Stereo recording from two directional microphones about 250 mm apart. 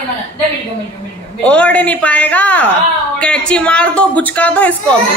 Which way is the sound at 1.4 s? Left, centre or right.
Centre.